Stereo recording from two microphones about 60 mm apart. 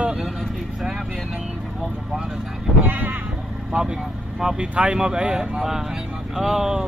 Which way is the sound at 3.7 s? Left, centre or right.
Centre.